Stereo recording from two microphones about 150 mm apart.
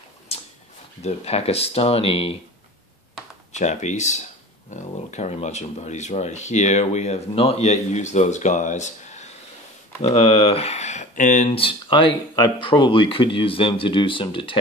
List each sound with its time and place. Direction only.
0.3 s a sound: 40° left (ahead or behind)
1.0 s speech: 45° left (ahead or behind)
3.5 s speech: 50° left (ahead or behind)
11.5 s speech: 35° left (ahead or behind)